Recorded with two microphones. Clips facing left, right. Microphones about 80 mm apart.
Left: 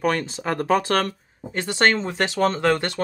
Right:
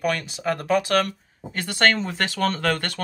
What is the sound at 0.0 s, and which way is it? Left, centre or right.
Speech, left.